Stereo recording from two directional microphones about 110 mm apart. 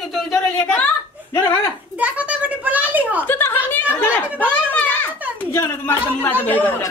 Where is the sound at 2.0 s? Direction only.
15° right (ahead or behind).